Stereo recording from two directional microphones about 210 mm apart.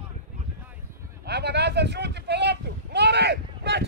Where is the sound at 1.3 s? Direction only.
50° right (ahead or behind).